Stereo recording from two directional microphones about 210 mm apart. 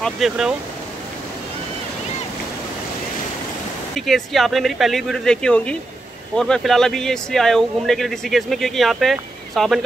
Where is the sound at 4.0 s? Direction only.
Centre (ahead or behind).